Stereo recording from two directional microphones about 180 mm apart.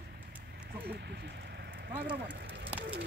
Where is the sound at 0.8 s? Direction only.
65° right (ahead or behind).